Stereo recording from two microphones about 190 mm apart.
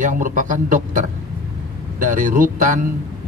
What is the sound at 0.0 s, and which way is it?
Speech, 45° right (ahead or behind).